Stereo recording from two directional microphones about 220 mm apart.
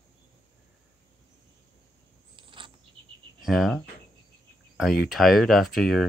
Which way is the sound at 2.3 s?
20° right (ahead or behind).